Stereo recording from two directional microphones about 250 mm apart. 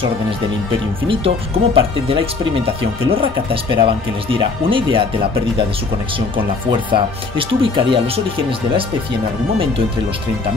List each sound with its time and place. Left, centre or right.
1.0 s speech: right
6.3 s speech: centre